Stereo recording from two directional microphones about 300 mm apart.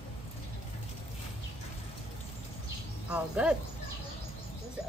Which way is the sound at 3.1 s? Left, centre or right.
Centre.